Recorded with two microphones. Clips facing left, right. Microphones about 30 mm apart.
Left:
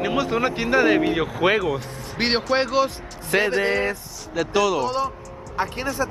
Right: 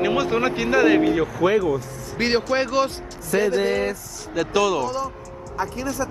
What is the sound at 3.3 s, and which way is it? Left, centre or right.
Speech, left.